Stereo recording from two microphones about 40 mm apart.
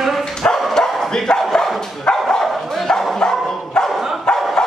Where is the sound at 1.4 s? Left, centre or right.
Centre.